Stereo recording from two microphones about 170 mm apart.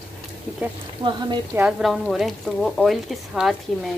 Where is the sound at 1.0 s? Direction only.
25° right (ahead or behind).